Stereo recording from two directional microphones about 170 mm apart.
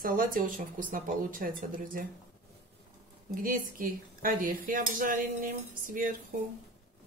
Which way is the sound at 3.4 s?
55° right (ahead or behind).